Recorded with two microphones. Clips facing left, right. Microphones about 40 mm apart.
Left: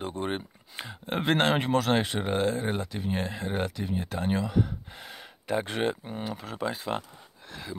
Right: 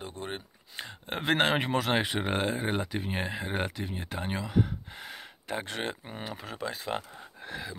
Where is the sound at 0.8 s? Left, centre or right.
Centre.